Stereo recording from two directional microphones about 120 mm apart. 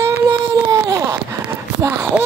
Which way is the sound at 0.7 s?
30° right (ahead or behind).